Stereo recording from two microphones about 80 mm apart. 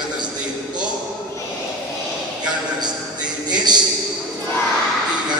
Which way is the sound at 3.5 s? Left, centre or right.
Right.